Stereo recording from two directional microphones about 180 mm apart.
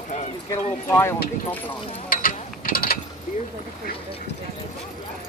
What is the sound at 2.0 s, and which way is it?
Mechanisms, 55° left (ahead or behind).